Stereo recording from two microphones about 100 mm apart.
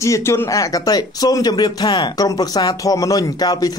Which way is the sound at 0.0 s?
30° left (ahead or behind).